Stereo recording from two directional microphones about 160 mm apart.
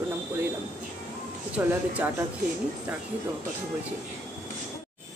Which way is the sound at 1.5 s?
10° right (ahead or behind).